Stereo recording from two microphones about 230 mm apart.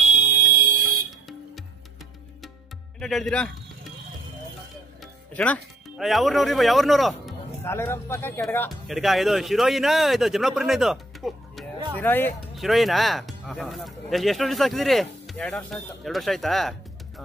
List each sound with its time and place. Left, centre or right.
0.0 s fire alarm: right
3.0 s speech: centre
5.0 s speech: centre
7.6 s speech: centre